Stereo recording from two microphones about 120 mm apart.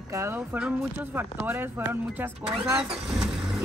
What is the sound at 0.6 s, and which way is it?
Speech, 10° right (ahead or behind).